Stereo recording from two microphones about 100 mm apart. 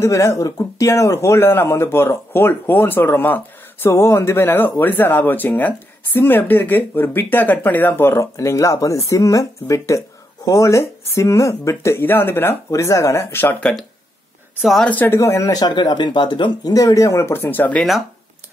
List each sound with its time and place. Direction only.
0.0 s speech: 30° left (ahead or behind)
13.6 s speech: 10° left (ahead or behind)
14.9 s speech: 15° left (ahead or behind)
15.1 s speech: 30° left (ahead or behind); by 16.7 s 50° left (ahead or behind)
16.7 s speech: 35° left (ahead or behind); by 17.8 s 15° left (ahead or behind)